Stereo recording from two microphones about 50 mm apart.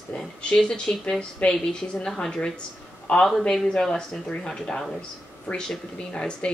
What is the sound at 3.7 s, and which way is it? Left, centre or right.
Speech, centre.